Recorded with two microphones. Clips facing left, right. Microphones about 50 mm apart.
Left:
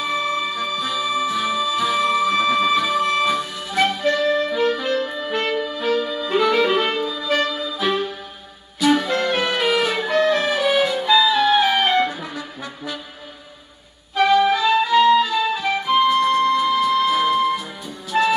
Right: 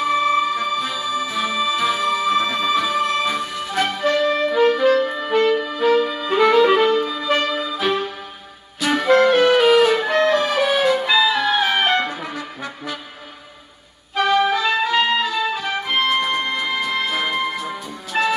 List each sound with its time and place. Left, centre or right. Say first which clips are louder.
0.0 s music: right 5 dB; right
4.5 s music: right 5 dB; right
5.7 s saxophone: right 4 dB; right
7.0 s music: right 1 dB; right
14.1 s music: left 1 dB; right
16.2 s music: left 5 dB; right